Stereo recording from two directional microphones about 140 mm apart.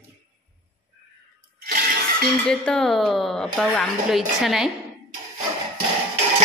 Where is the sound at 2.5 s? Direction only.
5° left (ahead or behind).